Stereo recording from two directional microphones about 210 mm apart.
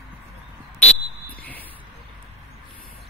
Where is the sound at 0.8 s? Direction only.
45° left (ahead or behind).